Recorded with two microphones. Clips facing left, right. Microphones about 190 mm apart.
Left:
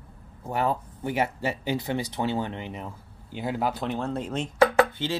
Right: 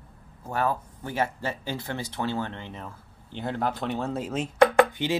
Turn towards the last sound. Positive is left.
turn(degrees=0)  # may be behind; listen again after turning